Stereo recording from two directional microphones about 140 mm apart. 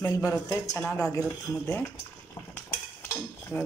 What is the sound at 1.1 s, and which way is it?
Speech, 20° left (ahead or behind).